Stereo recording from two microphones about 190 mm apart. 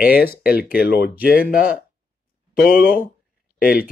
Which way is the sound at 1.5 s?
50° left (ahead or behind).